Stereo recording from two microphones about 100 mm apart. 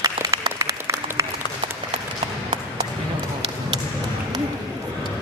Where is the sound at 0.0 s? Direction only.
35° right (ahead or behind).